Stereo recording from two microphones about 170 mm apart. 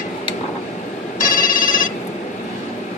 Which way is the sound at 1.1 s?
55° left (ahead or behind).